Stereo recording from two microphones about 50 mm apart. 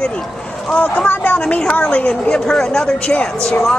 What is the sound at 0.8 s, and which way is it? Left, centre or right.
Speech, left.